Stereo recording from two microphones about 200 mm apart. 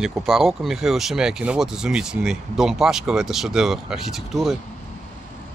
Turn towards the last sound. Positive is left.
turn(degrees=0)  # may be behind; listen again after turning